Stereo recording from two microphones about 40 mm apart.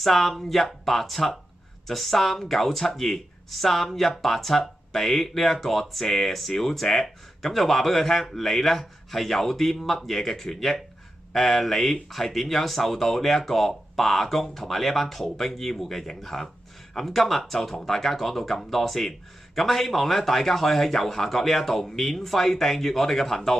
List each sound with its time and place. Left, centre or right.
0.0 s speech: centre